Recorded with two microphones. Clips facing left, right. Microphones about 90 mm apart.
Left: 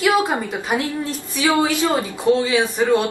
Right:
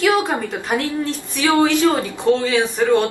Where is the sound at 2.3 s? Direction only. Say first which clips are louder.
Left 1 dB; 5° left (ahead or behind).